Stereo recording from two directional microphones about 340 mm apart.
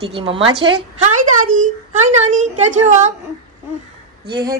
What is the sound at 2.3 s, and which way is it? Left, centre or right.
Speech, right.